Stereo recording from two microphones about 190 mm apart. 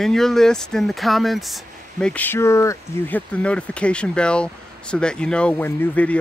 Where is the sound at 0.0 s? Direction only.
Centre (ahead or behind).